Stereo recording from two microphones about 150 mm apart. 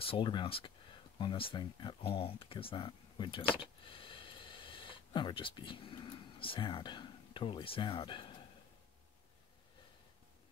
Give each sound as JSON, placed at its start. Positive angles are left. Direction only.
{"t": 0.0, "sound": "speech", "side_deg": 35}